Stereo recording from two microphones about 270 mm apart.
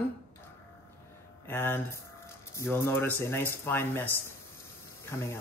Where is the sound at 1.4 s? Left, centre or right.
Centre.